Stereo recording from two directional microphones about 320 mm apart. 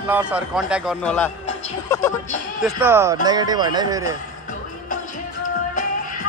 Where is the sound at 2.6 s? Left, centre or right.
Centre.